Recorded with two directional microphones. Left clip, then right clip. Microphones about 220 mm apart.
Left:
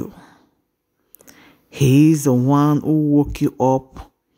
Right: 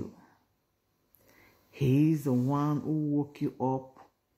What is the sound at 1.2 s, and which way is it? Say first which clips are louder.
Speech: left 13 dB; 45° left (ahead or behind).